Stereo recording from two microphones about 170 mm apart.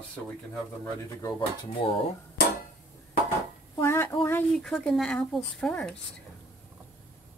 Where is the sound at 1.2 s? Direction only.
25° left (ahead or behind).